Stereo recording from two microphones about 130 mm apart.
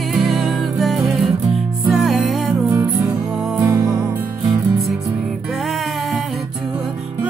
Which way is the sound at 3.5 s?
25° right (ahead or behind).